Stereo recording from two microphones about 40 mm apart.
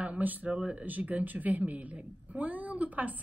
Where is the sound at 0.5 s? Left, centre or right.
Right.